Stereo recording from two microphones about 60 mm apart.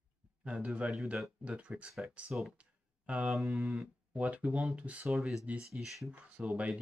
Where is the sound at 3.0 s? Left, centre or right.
Right.